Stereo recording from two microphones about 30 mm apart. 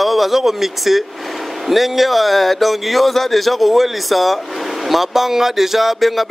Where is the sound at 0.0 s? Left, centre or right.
Centre.